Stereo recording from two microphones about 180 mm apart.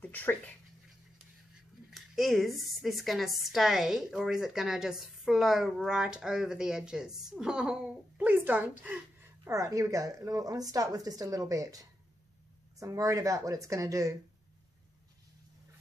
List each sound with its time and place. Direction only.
0.0 s speech: 10° left (ahead or behind)
1.9 s a woman's voice: centre (ahead or behind); by 14.1 s 20° right (ahead or behind)